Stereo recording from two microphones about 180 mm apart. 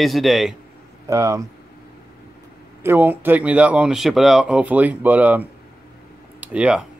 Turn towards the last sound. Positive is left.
turn(degrees=-5)  # may be behind; listen again after turning